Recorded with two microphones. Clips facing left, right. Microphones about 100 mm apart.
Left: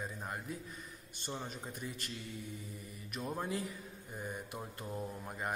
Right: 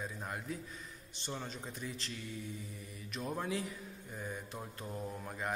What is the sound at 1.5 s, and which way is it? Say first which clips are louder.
Speech: even; 55° left (ahead or behind).